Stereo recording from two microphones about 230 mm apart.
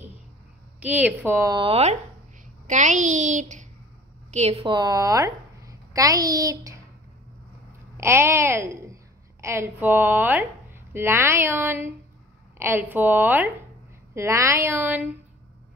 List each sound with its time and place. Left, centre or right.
0.7 s a child's voice: centre
8.0 s speech: centre